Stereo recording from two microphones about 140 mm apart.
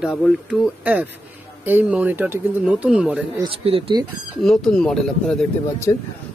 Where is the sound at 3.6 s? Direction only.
40° right (ahead or behind).